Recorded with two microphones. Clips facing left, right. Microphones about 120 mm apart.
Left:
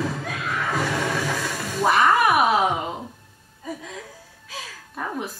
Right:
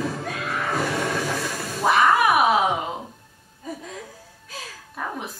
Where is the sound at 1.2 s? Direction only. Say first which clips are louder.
Even; 40° right (ahead or behind).